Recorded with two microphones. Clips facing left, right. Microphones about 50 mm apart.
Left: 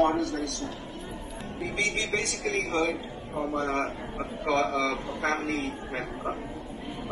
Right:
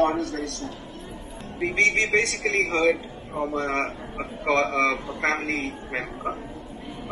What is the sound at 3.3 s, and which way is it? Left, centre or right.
Speech, right.